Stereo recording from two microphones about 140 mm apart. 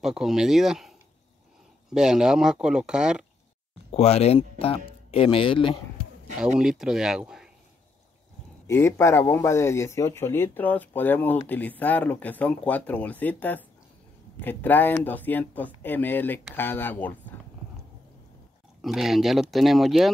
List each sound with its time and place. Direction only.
0.0 s speech: 5° right (ahead or behind)
2.0 s speech: 5° right (ahead or behind)
3.9 s speech: 50° left (ahead or behind)
6.6 s speech: 5° right (ahead or behind)
8.6 s a man's voice: 20° left (ahead or behind)
18.8 s speech: centre (ahead or behind)